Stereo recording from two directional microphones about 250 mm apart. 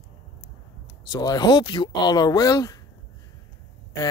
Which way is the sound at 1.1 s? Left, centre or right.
Centre.